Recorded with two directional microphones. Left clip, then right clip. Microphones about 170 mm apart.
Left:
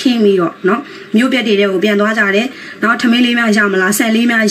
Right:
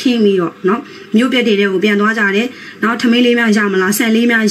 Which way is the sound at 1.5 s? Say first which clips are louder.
Left 1 dB; 15° right (ahead or behind).